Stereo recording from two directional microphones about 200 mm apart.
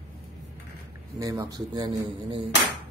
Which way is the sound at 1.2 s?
15° right (ahead or behind).